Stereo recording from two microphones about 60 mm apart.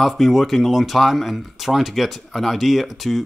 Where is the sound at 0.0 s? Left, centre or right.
Centre.